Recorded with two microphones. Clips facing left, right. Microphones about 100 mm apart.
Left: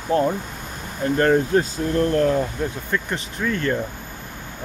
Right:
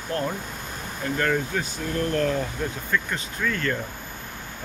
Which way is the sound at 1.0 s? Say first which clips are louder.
Left 7 dB; 30° left (ahead or behind).